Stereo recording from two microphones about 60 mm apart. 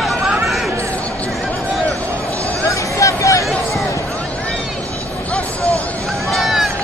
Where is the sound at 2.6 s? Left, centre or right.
Left.